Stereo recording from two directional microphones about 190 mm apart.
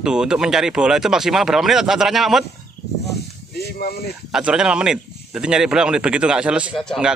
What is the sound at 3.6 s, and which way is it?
Speech, 55° left (ahead or behind).